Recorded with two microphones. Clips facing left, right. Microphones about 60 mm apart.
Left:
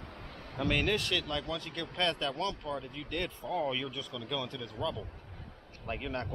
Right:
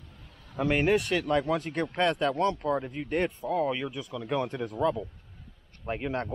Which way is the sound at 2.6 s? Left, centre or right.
Right.